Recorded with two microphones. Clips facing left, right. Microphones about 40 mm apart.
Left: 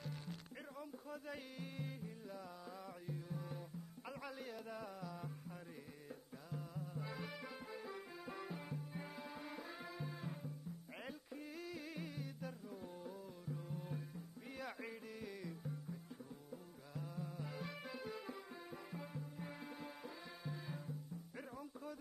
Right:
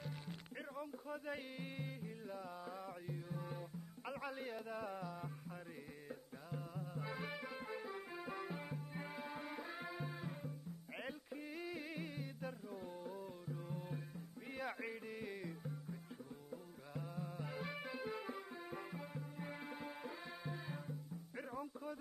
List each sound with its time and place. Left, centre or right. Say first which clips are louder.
0.0 s music: even; centre
6.5 s music: right 1 dB; centre
13.0 s music: right 2 dB; centre